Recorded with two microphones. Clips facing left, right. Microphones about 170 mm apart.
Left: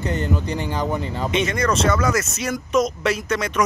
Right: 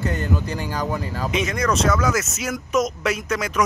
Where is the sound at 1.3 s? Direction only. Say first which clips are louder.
Left 1 dB; centre (ahead or behind).